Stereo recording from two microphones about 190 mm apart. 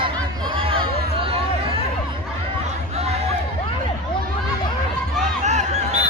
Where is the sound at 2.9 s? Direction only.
35° right (ahead or behind).